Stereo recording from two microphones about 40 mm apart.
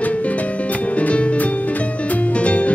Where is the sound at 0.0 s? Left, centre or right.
Left.